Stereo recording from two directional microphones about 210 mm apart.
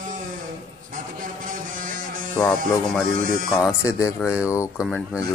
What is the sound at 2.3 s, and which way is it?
Speech, 15° left (ahead or behind).